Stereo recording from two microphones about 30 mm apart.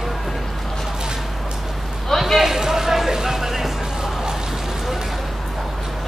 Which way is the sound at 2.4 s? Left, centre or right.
Centre.